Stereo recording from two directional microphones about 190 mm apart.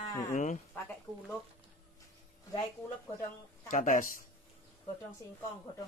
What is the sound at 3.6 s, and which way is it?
Speech, 45° left (ahead or behind).